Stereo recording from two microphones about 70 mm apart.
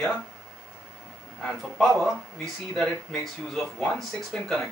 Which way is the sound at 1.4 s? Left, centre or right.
Centre.